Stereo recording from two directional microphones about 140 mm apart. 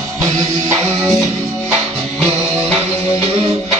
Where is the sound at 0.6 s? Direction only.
15° right (ahead or behind).